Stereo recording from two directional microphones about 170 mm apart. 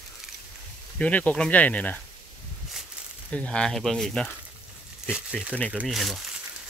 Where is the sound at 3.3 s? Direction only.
5° left (ahead or behind).